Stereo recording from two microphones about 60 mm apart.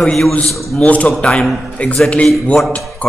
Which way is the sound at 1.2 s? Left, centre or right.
Centre.